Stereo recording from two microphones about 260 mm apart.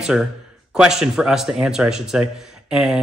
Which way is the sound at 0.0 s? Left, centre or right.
Centre.